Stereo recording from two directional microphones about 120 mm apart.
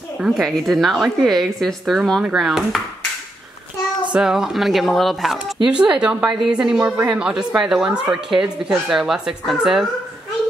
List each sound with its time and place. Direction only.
0.2 s speech: centre (ahead or behind)
4.1 s speech: 5° right (ahead or behind)